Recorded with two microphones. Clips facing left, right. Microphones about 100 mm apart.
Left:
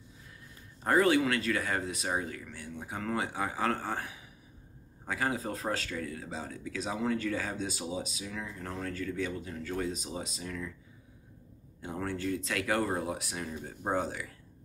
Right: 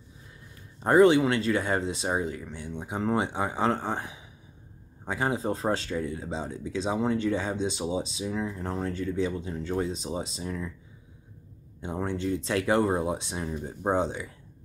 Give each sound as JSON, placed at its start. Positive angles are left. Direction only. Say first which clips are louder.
{"t": 0.8, "sound": "speech", "louder": "right 6 dB", "side_deg": -25}
{"t": 11.8, "sound": "speech", "louder": "right 4 dB", "side_deg": -20}